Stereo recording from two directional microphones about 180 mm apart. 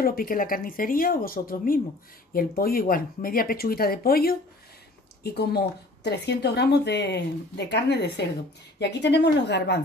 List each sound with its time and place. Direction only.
0.0 s a woman's voice: 55° left (ahead or behind); by 9.8 s 70° left (ahead or behind)